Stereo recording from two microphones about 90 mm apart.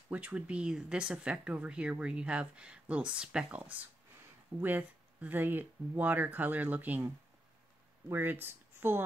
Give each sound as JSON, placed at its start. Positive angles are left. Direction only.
{"t": 0.1, "sound": "speech", "side_deg": -15}
{"t": 8.1, "sound": "speech", "side_deg": -25}